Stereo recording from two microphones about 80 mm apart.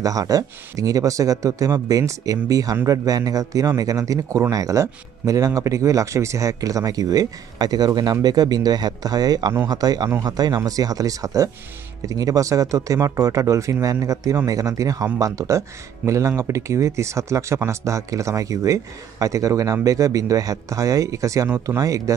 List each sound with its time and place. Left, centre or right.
0.0 s a man's voice: right